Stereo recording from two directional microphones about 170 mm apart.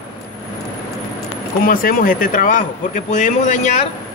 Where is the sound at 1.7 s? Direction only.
55° left (ahead or behind).